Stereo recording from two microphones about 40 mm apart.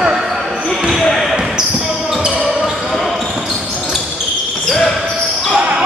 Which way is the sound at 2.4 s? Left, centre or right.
Centre.